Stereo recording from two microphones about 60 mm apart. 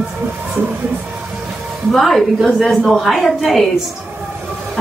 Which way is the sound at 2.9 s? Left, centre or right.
Centre.